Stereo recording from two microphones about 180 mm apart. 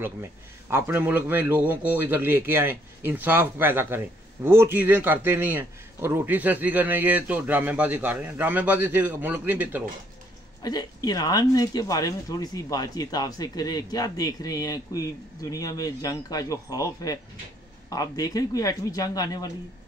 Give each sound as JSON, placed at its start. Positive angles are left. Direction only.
{"t": 0.0, "sound": "a man's voice", "side_deg": -15}
{"t": 10.6, "sound": "speech", "side_deg": 20}